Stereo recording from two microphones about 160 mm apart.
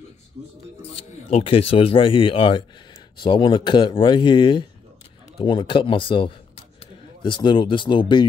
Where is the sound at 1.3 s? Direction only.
35° left (ahead or behind).